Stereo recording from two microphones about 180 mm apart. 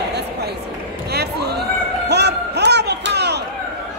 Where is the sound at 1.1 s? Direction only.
65° right (ahead or behind).